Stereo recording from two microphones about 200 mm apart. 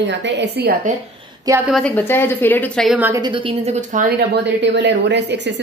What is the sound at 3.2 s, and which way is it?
Speech, 25° right (ahead or behind).